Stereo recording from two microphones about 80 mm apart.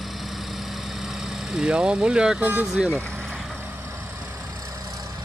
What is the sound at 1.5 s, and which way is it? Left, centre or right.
Speech, centre.